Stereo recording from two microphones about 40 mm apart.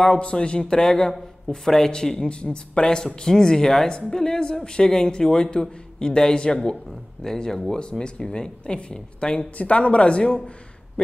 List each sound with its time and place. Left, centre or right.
0.0 s a woman's voice: left